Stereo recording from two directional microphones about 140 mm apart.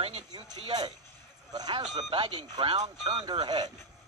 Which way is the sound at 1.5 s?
30° right (ahead or behind).